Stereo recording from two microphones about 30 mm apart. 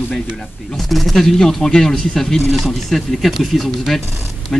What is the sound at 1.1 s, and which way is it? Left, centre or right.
Speech, centre.